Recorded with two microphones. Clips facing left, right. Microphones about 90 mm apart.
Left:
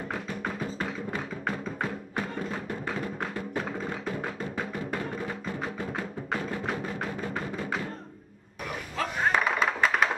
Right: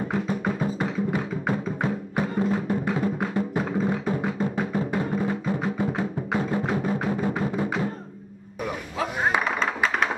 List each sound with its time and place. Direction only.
1.8 s music: 10° right (ahead or behind)
9.0 s a sound: 10° right (ahead or behind)
9.4 s music: centre (ahead or behind)